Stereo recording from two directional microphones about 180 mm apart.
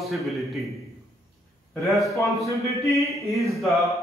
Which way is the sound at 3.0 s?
15° left (ahead or behind).